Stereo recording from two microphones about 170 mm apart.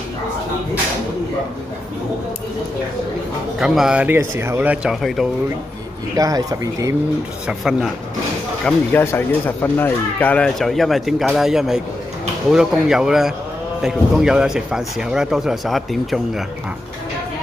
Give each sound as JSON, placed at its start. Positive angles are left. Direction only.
{"t": 3.5, "sound": "speech", "side_deg": -5}
{"t": 6.1, "sound": "speech", "side_deg": -20}
{"t": 7.4, "sound": "speech", "side_deg": -5}
{"t": 8.6, "sound": "speech", "side_deg": 10}